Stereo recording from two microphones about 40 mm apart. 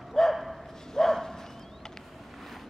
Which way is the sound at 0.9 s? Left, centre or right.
Centre.